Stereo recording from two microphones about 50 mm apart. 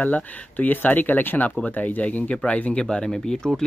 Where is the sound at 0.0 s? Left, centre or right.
Left.